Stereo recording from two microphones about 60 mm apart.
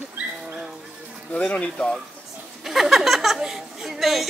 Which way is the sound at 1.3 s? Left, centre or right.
Left.